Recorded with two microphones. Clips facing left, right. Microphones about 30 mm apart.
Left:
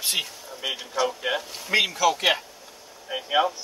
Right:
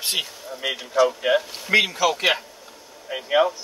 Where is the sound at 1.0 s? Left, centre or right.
Centre.